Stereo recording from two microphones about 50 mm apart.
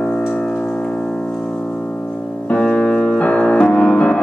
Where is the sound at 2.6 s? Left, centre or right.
Left.